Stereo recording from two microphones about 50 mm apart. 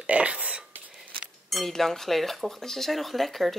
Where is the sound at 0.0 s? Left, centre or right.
Right.